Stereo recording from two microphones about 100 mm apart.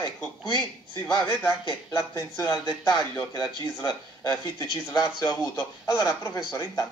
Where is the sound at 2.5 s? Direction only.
45° left (ahead or behind).